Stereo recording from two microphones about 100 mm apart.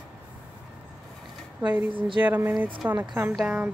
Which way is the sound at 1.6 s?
20° right (ahead or behind).